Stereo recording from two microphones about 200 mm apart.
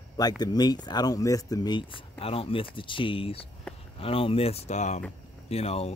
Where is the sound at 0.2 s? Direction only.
20° left (ahead or behind).